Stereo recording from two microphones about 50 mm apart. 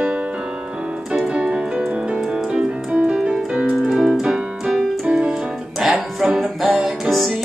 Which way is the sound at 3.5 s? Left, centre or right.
Right.